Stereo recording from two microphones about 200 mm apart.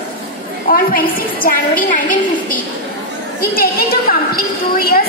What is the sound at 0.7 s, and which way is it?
A woman's voice, 45° left (ahead or behind).